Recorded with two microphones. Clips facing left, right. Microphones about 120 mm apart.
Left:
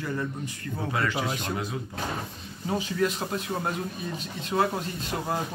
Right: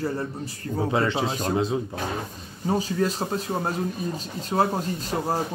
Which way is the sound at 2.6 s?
40° right (ahead or behind).